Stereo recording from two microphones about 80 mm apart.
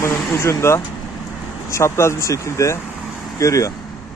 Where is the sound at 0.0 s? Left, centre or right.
Left.